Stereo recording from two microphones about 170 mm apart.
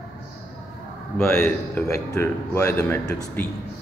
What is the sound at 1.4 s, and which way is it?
A man's voice, 10° left (ahead or behind).